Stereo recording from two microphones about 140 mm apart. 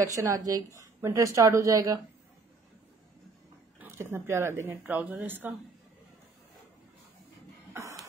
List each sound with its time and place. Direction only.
0.0 s speech: 20° right (ahead or behind)
3.8 s speech: 15° right (ahead or behind)
7.7 s beatboxing: 25° right (ahead or behind)